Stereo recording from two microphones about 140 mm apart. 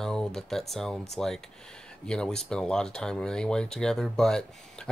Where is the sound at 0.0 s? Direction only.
5° left (ahead or behind).